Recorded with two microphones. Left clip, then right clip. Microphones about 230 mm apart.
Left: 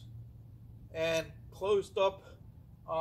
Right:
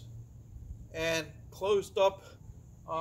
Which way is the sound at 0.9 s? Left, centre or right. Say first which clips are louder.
Even; centre.